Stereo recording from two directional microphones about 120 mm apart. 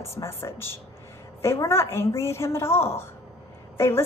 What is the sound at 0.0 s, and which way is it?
A woman's voice, 20° left (ahead or behind).